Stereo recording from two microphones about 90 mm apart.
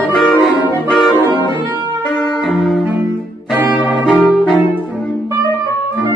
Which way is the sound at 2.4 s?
Centre (ahead or behind).